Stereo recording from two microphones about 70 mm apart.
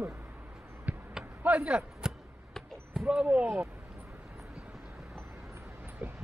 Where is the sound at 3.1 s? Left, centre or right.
Centre.